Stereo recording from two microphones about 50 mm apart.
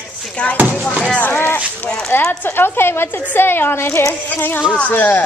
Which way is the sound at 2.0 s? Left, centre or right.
Left.